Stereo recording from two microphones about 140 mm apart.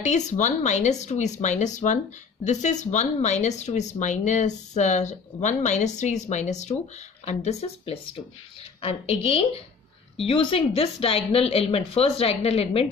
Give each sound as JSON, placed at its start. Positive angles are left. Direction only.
{"t": 0.0, "sound": "speech", "side_deg": 55}